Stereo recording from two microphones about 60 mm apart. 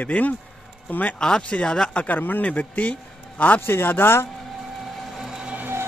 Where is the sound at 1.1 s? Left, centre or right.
Centre.